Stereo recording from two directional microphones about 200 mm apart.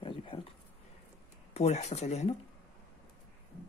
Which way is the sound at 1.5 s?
35° left (ahead or behind).